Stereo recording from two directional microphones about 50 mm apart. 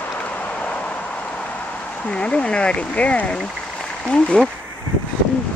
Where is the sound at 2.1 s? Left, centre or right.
Left.